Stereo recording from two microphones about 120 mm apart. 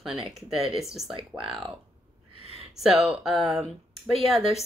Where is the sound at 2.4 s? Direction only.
55° right (ahead or behind).